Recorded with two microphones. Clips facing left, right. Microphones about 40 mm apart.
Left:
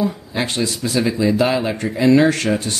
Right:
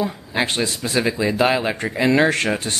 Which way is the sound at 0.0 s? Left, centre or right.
Right.